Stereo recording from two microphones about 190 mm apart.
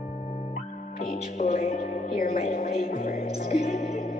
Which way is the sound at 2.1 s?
45° left (ahead or behind).